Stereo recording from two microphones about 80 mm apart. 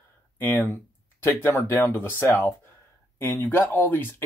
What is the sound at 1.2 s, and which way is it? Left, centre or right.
Speech, left.